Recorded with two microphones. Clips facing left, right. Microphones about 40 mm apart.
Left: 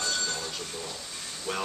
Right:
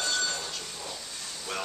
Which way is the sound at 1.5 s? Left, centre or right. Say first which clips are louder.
Left 3 dB; centre.